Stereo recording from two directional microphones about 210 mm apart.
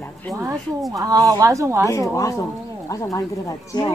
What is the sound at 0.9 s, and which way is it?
Speech, 15° right (ahead or behind).